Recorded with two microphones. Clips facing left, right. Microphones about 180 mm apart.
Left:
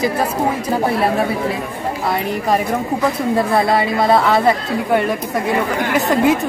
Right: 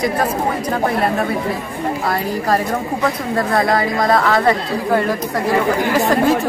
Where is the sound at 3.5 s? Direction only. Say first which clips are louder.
Left 1 dB; 25° left (ahead or behind).